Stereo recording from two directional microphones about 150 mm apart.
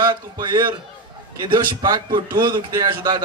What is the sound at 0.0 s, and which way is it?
A man's voice, 30° right (ahead or behind).